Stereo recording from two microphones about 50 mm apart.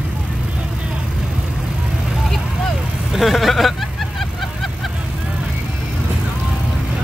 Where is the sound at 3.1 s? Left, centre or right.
Centre.